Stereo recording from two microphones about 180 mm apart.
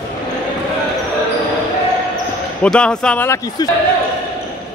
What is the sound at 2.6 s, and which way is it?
Speech, 5° left (ahead or behind).